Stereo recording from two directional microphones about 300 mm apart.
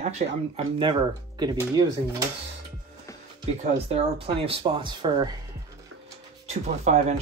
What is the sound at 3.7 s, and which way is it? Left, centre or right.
Speech, right.